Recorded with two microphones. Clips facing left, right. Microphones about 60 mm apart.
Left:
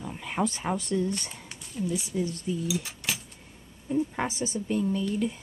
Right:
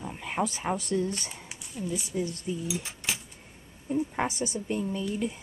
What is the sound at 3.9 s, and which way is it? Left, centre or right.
Speech, centre.